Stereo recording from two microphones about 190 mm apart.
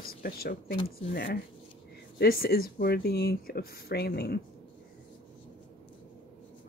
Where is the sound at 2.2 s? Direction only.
55° left (ahead or behind).